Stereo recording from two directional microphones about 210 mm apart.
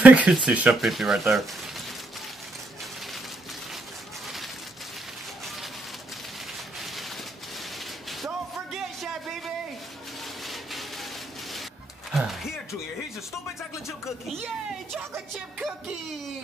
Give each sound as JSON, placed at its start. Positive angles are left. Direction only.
{"t": 0.0, "sound": "speech", "side_deg": -5}
{"t": 8.7, "sound": "music", "side_deg": 0}
{"t": 12.1, "sound": "a sound", "side_deg": 0}
{"t": 13.6, "sound": "music", "side_deg": 0}